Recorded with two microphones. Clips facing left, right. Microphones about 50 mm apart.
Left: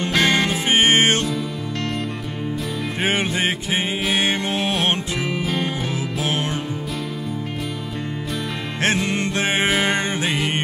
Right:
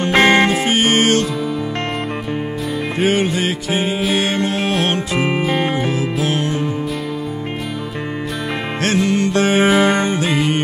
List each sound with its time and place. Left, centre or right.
0.1 s music: right
0.7 s music: left
3.0 s music: left
8.8 s music: left